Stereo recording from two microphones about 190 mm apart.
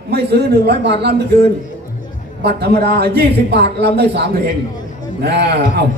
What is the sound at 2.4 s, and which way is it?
A man's voice, 60° right (ahead or behind).